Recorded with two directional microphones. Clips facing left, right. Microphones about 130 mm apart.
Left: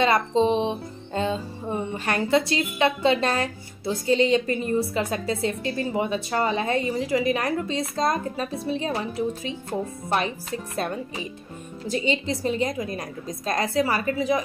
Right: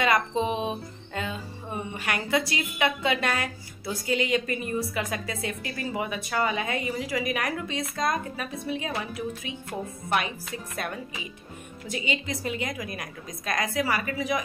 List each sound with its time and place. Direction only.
0.0 s a woman's voice: 30° left (ahead or behind)